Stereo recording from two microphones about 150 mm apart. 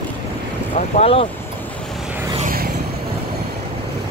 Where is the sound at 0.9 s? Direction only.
40° left (ahead or behind).